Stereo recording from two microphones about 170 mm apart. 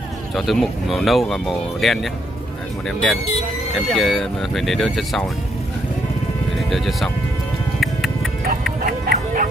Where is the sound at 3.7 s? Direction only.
Centre (ahead or behind).